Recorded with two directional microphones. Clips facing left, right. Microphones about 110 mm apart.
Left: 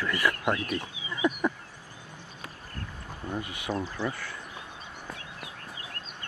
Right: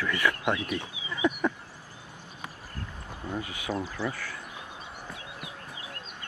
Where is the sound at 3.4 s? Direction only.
15° right (ahead or behind).